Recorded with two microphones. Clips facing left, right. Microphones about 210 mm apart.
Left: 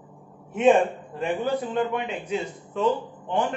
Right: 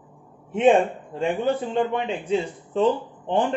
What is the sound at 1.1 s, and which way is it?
Speech, 25° right (ahead or behind).